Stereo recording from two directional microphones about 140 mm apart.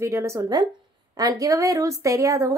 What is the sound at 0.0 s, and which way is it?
A woman's voice, 20° right (ahead or behind).